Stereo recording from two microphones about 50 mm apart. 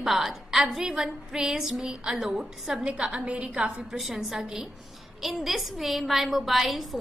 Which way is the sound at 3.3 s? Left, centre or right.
Right.